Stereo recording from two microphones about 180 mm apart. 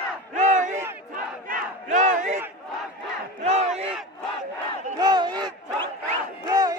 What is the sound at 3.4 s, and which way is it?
Battle cry, 35° right (ahead or behind).